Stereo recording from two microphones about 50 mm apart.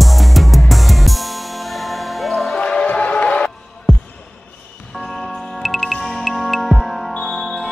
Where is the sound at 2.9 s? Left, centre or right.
Left.